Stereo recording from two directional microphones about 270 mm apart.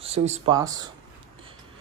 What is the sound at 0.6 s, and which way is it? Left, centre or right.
Speech, centre.